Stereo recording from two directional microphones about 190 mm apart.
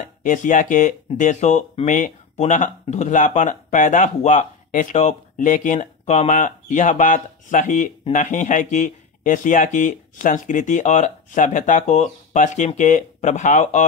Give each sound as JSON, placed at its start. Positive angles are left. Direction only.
{"t": 0.0, "sound": "speech", "side_deg": 40}